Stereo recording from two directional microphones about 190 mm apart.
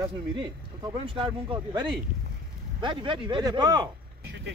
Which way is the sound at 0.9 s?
25° right (ahead or behind).